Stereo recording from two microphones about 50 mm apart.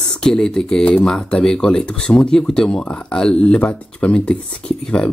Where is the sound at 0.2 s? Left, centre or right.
Centre.